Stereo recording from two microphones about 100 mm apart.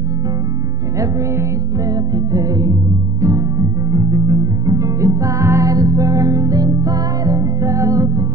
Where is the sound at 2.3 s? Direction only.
35° right (ahead or behind).